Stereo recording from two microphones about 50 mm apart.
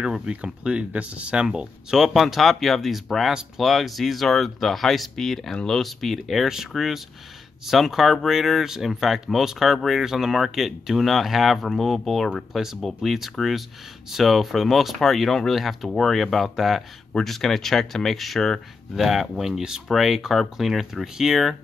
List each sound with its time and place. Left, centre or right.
0.0 s speech: centre
2.0 s speech: centre